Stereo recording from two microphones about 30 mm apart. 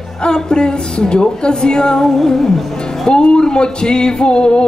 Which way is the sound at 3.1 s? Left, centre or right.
Left.